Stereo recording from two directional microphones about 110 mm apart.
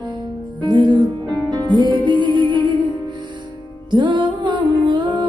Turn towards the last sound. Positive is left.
turn(degrees=-45)  # may be behind; listen again after turning